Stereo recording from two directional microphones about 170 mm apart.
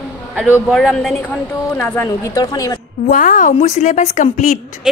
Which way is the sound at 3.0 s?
50° left (ahead or behind).